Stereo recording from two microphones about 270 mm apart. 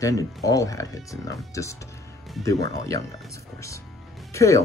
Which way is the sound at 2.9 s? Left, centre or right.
Centre.